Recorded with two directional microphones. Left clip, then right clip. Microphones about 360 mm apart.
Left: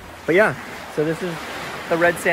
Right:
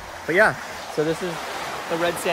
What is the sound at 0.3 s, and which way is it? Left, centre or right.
Speech, centre.